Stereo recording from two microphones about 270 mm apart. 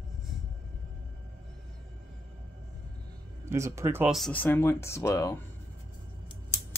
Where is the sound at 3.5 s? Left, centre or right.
Centre.